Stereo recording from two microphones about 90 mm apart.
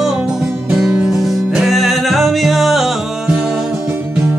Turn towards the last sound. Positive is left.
turn(degrees=-15)  # may be behind; listen again after turning